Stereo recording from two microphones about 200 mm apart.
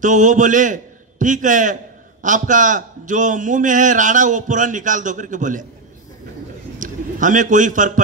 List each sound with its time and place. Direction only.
0.0 s a man's voice: 40° right (ahead or behind)
6.8 s a man's voice: 40° right (ahead or behind)